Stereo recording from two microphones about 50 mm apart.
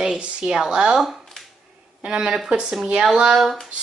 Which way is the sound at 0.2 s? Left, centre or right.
Centre.